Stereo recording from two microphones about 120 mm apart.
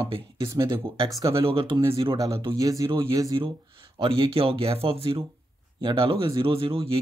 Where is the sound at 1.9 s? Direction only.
30° right (ahead or behind).